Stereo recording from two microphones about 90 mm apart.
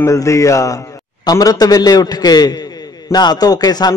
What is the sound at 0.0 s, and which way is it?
A man's voice, 35° left (ahead or behind).